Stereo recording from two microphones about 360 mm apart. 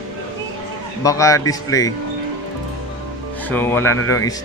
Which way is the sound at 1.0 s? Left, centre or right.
Centre.